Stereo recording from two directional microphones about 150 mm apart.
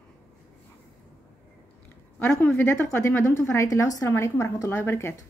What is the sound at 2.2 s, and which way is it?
A woman's voice, 15° left (ahead or behind).